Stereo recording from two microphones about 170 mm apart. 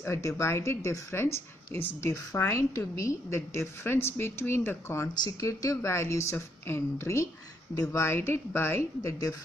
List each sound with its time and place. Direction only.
0.0 s speech: 15° left (ahead or behind)